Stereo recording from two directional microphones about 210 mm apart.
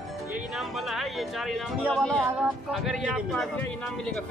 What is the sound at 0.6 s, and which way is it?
Speech, centre (ahead or behind).